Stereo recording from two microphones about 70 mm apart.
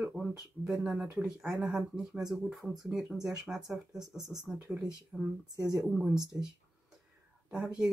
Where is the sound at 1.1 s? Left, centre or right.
Centre.